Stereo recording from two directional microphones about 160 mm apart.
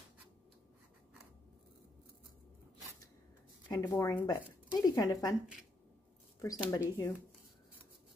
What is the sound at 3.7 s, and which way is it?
Speech, 20° left (ahead or behind).